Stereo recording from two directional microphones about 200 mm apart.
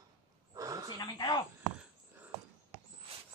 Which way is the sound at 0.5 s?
15° right (ahead or behind).